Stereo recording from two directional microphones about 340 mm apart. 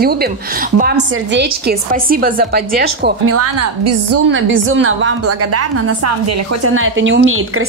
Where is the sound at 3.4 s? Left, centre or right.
Right.